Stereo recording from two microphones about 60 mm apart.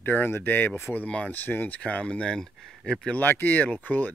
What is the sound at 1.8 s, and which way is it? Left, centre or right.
Speech, centre.